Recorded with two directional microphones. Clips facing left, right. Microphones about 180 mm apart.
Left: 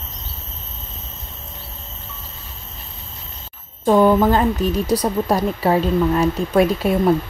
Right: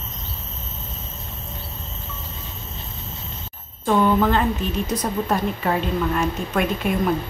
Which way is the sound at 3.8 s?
40° left (ahead or behind).